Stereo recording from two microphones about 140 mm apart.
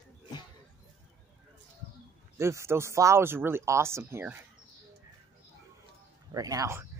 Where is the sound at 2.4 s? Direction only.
20° right (ahead or behind).